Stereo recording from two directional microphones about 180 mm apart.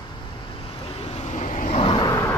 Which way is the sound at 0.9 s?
35° left (ahead or behind).